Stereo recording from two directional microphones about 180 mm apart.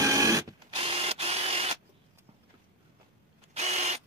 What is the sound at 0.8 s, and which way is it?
Printer, 30° right (ahead or behind).